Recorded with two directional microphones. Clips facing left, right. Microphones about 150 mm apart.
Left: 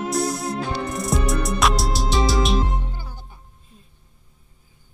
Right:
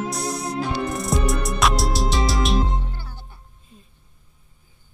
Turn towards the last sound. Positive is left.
turn(degrees=15)  # may be behind; listen again after turning